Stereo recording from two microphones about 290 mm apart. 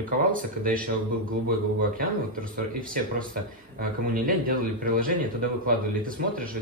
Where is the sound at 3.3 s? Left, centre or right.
Right.